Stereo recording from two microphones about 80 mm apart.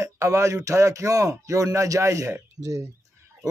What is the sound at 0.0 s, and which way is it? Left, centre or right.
A man's voice, right.